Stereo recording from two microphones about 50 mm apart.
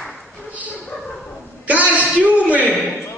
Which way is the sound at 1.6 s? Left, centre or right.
Right.